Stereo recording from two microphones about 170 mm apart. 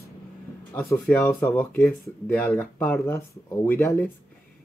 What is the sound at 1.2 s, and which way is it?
Speech, 10° left (ahead or behind).